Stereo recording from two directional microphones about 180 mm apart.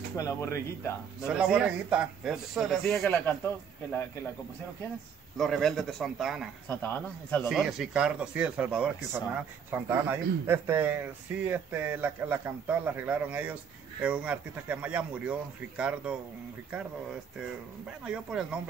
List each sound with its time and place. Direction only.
0.2 s speech: 15° left (ahead or behind)
1.2 s a man's voice: 5° right (ahead or behind); by 4.3 s 15° left (ahead or behind)
5.4 s a man's voice: centre (ahead or behind)
6.7 s speech: 10° left (ahead or behind)
7.4 s speech: centre (ahead or behind)
17.8 s a man's voice: 5° right (ahead or behind)